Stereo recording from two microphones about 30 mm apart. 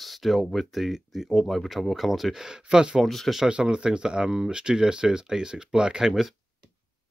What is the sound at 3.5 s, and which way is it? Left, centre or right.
Speech, right.